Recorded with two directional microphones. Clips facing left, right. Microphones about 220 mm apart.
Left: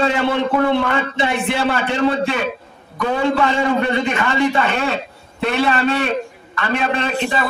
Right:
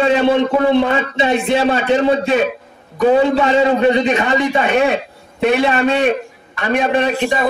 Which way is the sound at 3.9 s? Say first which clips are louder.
Right 5 dB; 20° right (ahead or behind).